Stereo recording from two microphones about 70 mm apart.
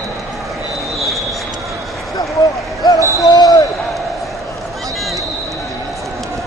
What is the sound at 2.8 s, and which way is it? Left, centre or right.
Basketball bounce, left.